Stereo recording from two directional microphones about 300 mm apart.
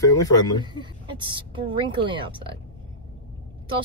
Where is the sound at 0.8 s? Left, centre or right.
Centre.